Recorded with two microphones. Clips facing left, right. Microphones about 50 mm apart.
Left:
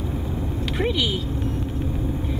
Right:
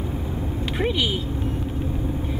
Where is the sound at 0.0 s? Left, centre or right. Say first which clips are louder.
Even; centre.